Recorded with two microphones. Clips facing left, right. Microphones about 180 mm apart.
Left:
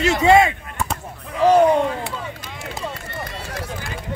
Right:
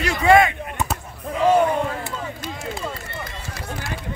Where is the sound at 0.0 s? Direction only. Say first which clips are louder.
Left 1 dB; 25° left (ahead or behind).